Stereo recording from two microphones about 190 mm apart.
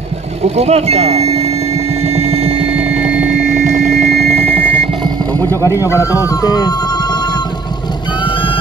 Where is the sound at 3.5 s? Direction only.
40° right (ahead or behind).